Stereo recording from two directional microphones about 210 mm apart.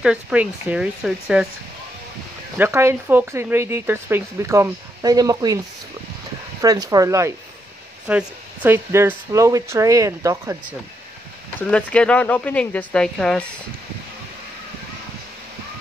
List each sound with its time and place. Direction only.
0.0 s speech: 5° right (ahead or behind)
2.5 s speech: 10° right (ahead or behind)
6.6 s speech: 15° right (ahead or behind)
11.6 s speech: 5° left (ahead or behind)